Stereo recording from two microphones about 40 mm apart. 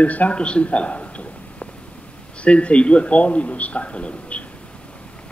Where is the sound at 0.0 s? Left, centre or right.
Left.